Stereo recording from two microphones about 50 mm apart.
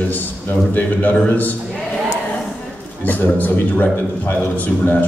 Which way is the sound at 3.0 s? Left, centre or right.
Left.